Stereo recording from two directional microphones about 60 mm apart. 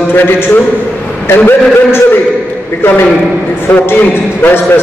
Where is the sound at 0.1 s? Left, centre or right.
Left.